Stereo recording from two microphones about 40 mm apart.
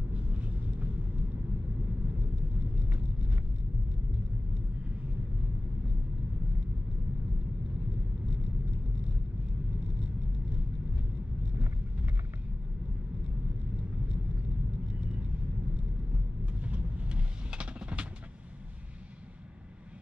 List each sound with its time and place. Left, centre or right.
0.1 s vehicle: right
16.5 s music: right